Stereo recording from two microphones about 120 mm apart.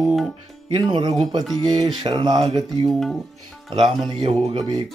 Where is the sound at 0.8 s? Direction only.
40° right (ahead or behind).